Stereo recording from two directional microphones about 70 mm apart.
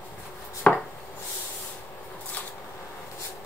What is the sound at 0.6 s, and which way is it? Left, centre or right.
Chopping, centre.